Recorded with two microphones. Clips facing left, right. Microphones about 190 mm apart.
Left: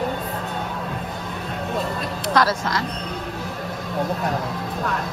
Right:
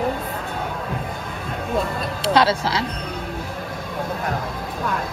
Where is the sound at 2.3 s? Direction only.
30° right (ahead or behind).